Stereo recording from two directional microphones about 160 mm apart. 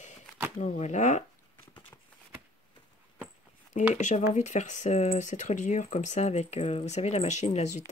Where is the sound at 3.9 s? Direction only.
45° left (ahead or behind).